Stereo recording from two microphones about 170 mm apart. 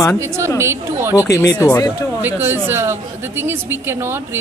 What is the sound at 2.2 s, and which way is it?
A woman's voice, 10° right (ahead or behind).